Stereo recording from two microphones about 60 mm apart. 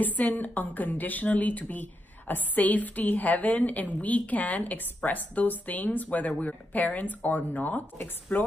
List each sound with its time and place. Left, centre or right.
0.0 s a woman's voice: left